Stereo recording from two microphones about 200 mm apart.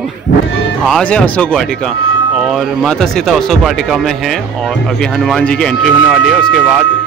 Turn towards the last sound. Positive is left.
turn(degrees=0)  # may be behind; listen again after turning